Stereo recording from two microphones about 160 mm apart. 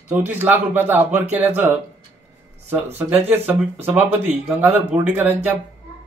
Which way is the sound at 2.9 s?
10° right (ahead or behind).